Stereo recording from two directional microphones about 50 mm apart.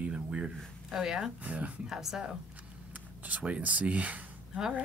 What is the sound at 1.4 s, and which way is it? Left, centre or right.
Speech, right.